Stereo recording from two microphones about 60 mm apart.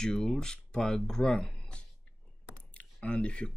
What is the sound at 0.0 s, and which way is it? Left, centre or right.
Speech, centre.